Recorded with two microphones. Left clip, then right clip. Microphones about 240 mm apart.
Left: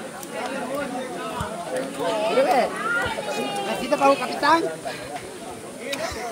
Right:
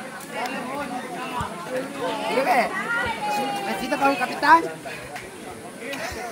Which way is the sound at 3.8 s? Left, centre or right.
Right.